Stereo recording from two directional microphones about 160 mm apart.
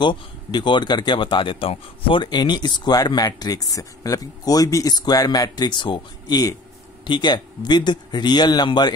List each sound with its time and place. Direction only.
0.0 s speech: 30° left (ahead or behind)